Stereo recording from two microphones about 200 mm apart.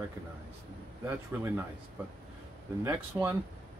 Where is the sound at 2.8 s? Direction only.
15° right (ahead or behind).